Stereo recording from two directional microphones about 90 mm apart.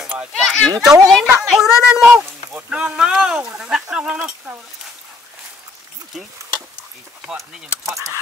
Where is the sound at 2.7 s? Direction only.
10° right (ahead or behind).